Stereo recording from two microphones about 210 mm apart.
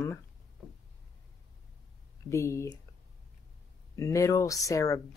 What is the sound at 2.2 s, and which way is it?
Speech, 15° left (ahead or behind).